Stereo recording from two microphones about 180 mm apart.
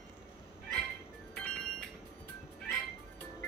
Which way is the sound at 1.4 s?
5° left (ahead or behind).